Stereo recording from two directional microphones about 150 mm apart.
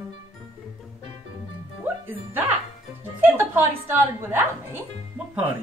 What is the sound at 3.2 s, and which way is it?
A woman's voice, 15° right (ahead or behind).